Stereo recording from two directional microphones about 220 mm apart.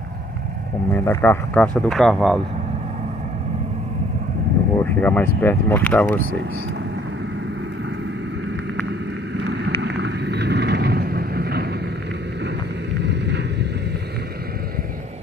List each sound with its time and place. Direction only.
0.9 s speech: 10° left (ahead or behind)
5.0 s speech: 10° left (ahead or behind)
9.5 s vehicle: 50° right (ahead or behind)
12.9 s vehicle: 50° right (ahead or behind)